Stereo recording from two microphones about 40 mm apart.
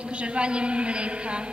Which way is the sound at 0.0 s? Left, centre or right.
Right.